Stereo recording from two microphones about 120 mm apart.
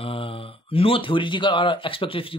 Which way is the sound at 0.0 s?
50° left (ahead or behind).